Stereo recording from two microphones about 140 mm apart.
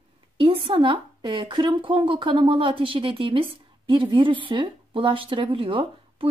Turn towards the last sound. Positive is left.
turn(degrees=-40)  # may be behind; listen again after turning